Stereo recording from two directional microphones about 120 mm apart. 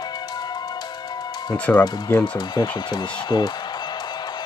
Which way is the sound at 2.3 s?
35° left (ahead or behind).